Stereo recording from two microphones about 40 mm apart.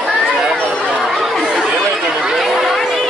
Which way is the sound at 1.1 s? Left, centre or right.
Centre.